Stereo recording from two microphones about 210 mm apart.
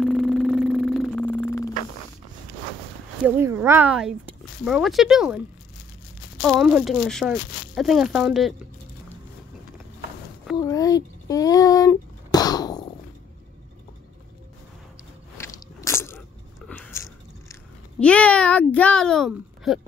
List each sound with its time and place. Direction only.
0.0 s music: centre (ahead or behind)
3.2 s speech: 10° right (ahead or behind)
6.4 s speech: 5° right (ahead or behind)
10.6 s a sound: 15° left (ahead or behind)
15.3 s biting: 15° left (ahead or behind)
18.0 s speech: 5° left (ahead or behind)